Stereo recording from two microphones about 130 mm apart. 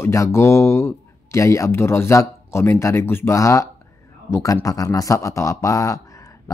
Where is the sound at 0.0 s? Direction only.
20° left (ahead or behind).